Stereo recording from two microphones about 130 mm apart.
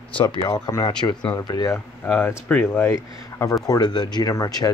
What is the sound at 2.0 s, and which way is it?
Speech, 15° left (ahead or behind).